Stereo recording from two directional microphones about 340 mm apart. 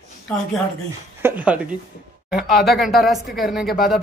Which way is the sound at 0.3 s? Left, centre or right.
Centre.